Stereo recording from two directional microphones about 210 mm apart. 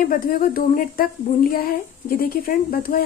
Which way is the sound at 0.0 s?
40° left (ahead or behind).